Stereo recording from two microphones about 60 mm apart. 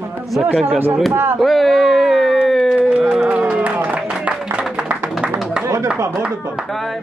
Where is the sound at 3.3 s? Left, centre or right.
Centre.